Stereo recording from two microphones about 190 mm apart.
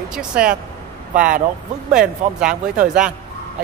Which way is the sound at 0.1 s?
5° right (ahead or behind).